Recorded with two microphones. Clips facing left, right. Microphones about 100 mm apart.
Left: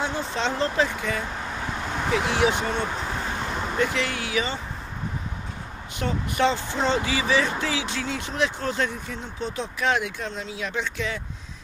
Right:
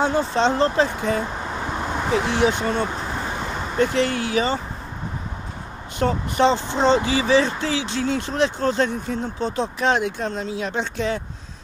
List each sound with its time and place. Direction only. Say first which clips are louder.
0.0 s speech: right 7 dB; 40° right (ahead or behind)
5.9 s speech: right 5 dB; 30° right (ahead or behind)